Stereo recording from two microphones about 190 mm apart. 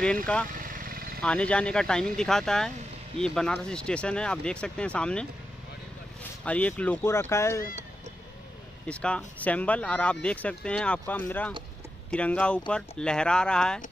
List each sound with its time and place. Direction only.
0.5 s a sound: 45° right (ahead or behind)
1.2 s speech: 5° left (ahead or behind)
6.4 s speech: 5° left (ahead or behind)
8.8 s speech: 5° left (ahead or behind)